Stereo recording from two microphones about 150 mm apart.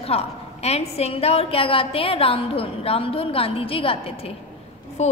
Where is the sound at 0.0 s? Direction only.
40° left (ahead or behind).